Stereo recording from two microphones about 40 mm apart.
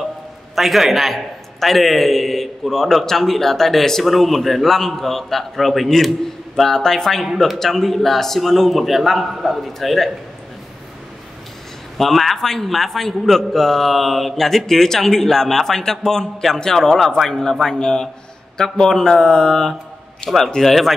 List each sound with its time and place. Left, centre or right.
0.6 s a man's voice: centre
12.0 s a man's voice: centre
20.2 s a man's voice: centre